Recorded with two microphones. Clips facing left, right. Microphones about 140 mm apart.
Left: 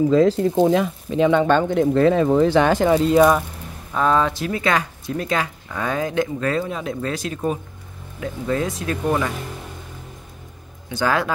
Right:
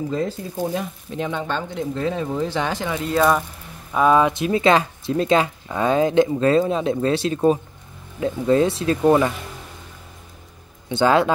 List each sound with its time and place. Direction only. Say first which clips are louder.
0.2 s speech: left 9 dB; 90° left; by 3.0 s 50° left (ahead or behind)
3.9 s speech: right 3 dB; 10° right (ahead or behind); by 9.3 s 25° right (ahead or behind)
10.9 s speech: right 4 dB; 25° right (ahead or behind)